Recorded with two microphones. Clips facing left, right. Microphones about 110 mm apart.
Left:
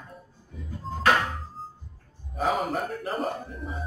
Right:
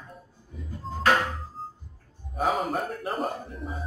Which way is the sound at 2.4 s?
Centre (ahead or behind).